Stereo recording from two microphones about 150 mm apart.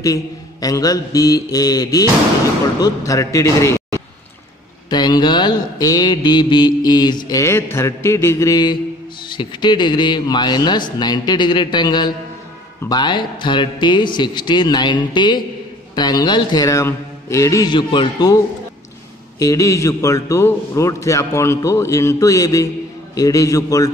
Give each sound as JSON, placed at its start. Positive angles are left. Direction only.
{"t": 0.0, "sound": "mantra", "side_deg": 25}
{"t": 12.8, "sound": "a man's voice", "side_deg": 30}
{"t": 15.9, "sound": "mantra", "side_deg": 25}
{"t": 19.3, "sound": "mantra", "side_deg": 20}